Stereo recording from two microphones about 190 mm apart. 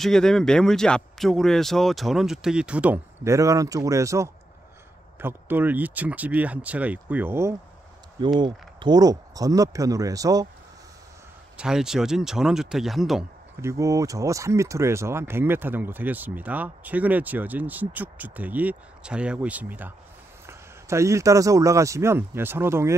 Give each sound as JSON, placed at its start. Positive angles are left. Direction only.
{"t": 0.0, "sound": "speech", "side_deg": 0}
{"t": 8.4, "sound": "speech", "side_deg": -25}
{"t": 11.5, "sound": "speech", "side_deg": -5}
{"t": 13.6, "sound": "speech", "side_deg": -15}